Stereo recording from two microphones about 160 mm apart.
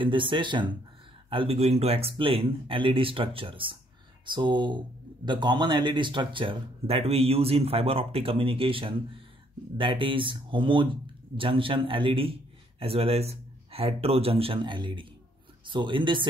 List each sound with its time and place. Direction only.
0.0 s speech: 30° right (ahead or behind)